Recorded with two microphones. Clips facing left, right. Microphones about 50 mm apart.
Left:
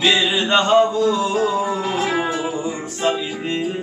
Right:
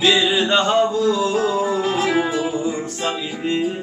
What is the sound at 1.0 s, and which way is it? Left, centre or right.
Music, centre.